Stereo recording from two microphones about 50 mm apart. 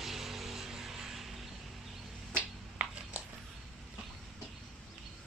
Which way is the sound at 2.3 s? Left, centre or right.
Right.